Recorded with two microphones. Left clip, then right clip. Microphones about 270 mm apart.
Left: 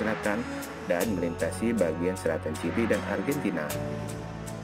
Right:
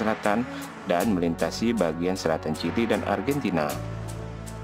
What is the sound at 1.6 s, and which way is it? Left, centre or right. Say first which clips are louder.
Speech: right 1 dB; centre.